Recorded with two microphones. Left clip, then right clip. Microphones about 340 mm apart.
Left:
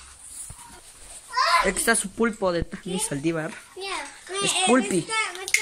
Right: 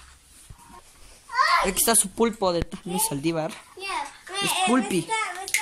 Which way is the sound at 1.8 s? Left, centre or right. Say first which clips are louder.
Even; centre.